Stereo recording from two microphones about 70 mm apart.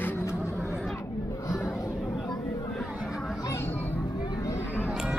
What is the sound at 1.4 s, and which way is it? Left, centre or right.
Chatter, left.